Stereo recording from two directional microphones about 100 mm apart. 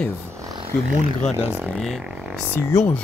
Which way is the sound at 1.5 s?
15° right (ahead or behind).